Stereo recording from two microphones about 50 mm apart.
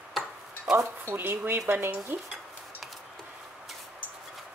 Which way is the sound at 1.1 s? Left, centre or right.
Right.